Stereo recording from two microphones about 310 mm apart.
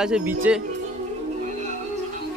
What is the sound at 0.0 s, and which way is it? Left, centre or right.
Speech, centre.